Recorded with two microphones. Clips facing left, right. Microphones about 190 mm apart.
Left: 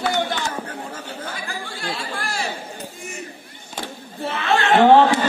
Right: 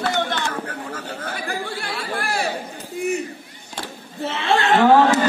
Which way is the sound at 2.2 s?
60° right (ahead or behind).